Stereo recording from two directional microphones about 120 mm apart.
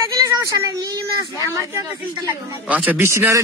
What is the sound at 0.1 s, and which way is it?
Speech, 30° right (ahead or behind).